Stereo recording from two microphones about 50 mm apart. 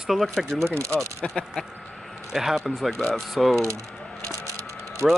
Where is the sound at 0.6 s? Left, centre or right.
Right.